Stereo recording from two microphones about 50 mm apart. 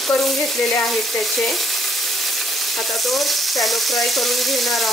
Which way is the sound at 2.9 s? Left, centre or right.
Centre.